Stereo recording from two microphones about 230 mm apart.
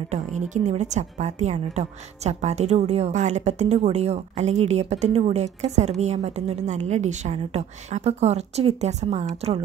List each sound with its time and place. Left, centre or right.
0.1 s a woman's voice: right